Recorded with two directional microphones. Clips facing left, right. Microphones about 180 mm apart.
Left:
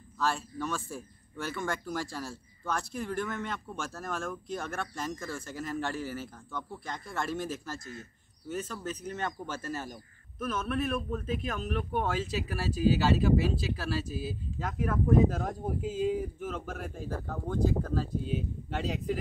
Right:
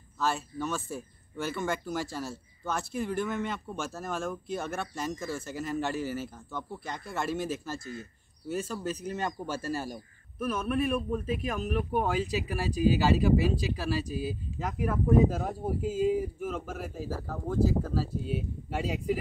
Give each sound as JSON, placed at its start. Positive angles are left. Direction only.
{"t": 0.2, "sound": "speech", "side_deg": -5}
{"t": 7.6, "sound": "speech", "side_deg": -30}
{"t": 8.5, "sound": "speech", "side_deg": -10}